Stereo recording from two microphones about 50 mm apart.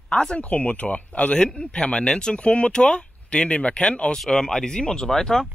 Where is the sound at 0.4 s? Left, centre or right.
Left.